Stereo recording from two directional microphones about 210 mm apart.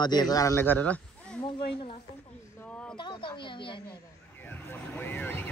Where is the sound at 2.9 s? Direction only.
20° left (ahead or behind).